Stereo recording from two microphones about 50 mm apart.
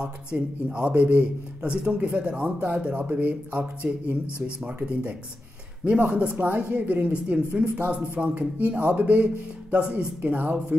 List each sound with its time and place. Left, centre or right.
0.7 s a man's voice: right
5.9 s a man's voice: right
6.7 s a man's voice: right